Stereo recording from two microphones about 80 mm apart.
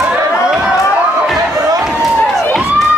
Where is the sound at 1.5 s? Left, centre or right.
Right.